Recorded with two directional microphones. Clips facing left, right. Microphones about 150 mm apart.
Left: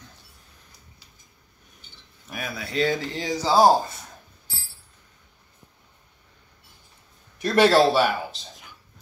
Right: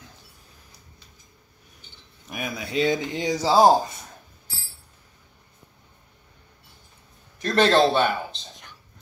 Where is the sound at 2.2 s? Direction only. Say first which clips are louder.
Right 2 dB; 10° right (ahead or behind).